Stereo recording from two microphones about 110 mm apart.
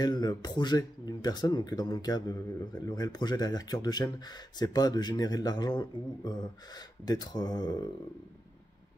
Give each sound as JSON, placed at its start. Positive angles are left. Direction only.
{"t": 0.0, "sound": "speech", "side_deg": 40}